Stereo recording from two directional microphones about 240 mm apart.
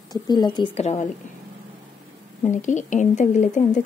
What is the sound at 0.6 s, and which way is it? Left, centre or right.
Speech, left.